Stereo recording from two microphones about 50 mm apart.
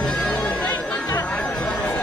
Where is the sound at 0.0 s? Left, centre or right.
Centre.